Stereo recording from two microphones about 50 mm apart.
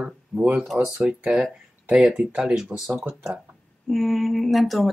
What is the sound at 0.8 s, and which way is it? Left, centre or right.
Speech, centre.